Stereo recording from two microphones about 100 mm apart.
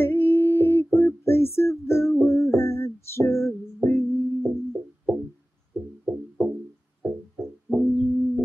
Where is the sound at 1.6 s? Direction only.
25° left (ahead or behind).